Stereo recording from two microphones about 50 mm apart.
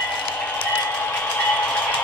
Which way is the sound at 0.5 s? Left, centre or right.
Left.